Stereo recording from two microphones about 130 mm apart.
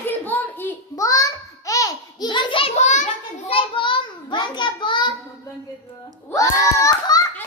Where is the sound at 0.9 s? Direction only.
25° left (ahead or behind); by 3.1 s 65° left (ahead or behind).